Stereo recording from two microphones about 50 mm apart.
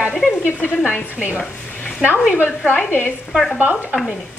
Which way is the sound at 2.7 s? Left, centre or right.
Left.